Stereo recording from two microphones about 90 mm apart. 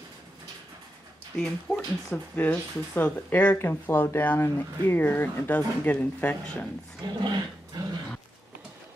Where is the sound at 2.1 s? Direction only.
20° left (ahead or behind).